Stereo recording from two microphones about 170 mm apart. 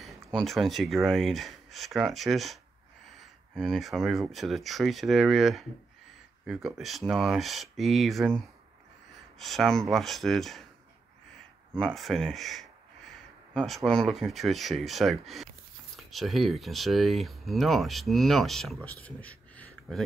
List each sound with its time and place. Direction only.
0.0 s speech: centre (ahead or behind)
11.7 s speech: 5° left (ahead or behind)